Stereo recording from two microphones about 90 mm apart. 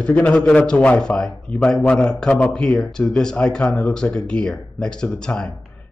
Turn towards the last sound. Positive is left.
turn(degrees=10)  # may be behind; listen again after turning